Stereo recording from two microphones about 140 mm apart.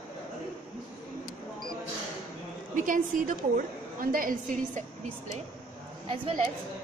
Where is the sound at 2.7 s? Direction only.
70° right (ahead or behind).